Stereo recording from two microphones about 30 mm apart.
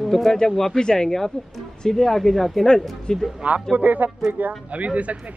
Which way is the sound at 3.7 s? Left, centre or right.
Right.